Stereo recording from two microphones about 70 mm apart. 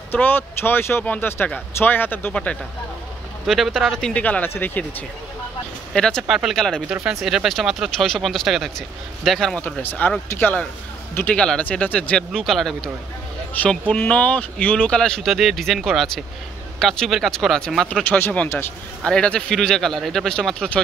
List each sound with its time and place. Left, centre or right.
0.1 s speech: left
3.4 s speech: centre
4.0 s speech: centre
5.9 s speech: centre
6.2 s speech: centre
6.5 s speech: centre
6.9 s speech: centre
9.8 s speech: left
11.2 s speech: centre
12.4 s speech: centre
13.9 s speech: left
15.0 s speech: centre
15.2 s speech: centre
18.0 s speech: left